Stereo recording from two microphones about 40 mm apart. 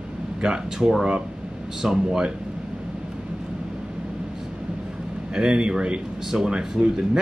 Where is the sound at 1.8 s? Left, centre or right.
Centre.